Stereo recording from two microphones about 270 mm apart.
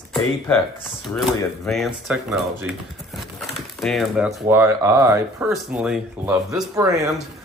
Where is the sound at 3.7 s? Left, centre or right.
Centre.